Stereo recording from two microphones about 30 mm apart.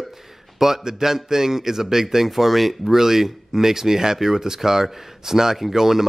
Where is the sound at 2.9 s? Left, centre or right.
Centre.